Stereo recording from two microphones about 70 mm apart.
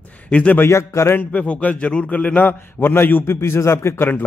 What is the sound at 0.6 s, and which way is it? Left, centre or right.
Speech, left.